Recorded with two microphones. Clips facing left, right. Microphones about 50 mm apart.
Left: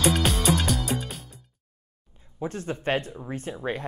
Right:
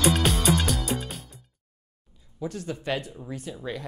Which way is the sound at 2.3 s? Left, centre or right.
Left.